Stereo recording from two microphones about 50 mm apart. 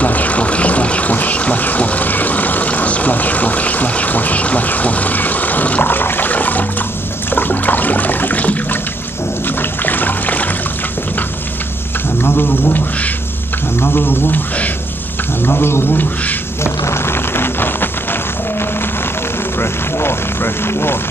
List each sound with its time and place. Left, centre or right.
0.0 s a sound: left
7.3 s toilet flush: left
9.6 s water: left
12.2 s speech: left
15.4 s speech: left
16.6 s a sound: left
19.6 s vehicle: left